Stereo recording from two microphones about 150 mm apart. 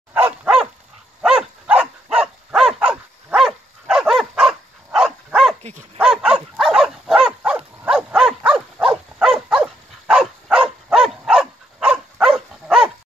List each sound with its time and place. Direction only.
0.1 s dog: 5° right (ahead or behind)
5.6 s dog: 50° right (ahead or behind)
5.9 s dog: 5° right (ahead or behind)